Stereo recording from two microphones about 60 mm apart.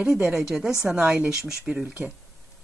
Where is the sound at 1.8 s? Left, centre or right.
Right.